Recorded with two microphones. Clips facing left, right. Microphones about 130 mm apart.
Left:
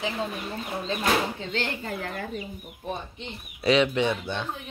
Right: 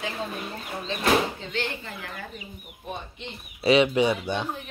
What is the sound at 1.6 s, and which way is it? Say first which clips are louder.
Speech: even; 40° left (ahead or behind).